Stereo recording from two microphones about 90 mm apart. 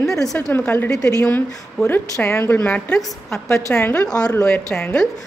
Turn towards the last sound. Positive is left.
turn(degrees=15)  # may be behind; listen again after turning